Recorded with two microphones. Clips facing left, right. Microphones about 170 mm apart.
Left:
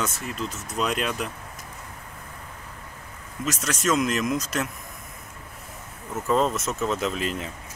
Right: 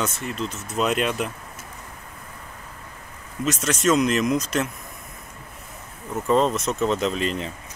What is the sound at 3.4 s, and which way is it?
Speech, centre (ahead or behind).